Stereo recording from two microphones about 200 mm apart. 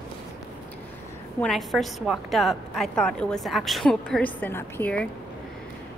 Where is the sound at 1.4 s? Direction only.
Centre (ahead or behind).